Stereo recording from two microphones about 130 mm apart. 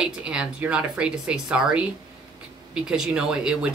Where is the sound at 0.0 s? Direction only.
5° right (ahead or behind).